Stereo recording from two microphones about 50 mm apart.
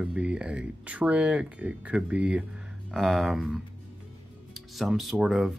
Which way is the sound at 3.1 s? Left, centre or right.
Centre.